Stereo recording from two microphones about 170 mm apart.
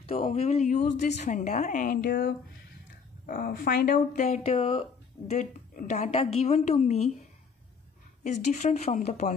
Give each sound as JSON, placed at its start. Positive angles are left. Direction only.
{"t": 0.1, "sound": "a woman's voice", "side_deg": 35}
{"t": 2.0, "sound": "speech", "side_deg": 65}
{"t": 4.2, "sound": "a woman's voice", "side_deg": 40}
{"t": 8.2, "sound": "a woman's voice", "side_deg": 45}